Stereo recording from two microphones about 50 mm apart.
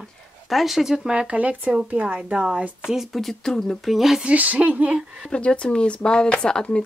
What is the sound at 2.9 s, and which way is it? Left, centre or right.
Speech, centre.